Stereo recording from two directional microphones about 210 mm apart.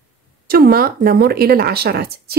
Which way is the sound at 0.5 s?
45° right (ahead or behind).